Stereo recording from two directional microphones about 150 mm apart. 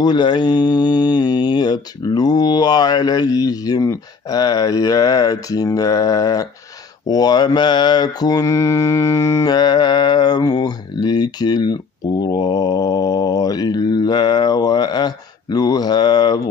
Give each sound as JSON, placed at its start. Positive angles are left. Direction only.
{"t": 0.0, "sound": "mantra", "side_deg": 30}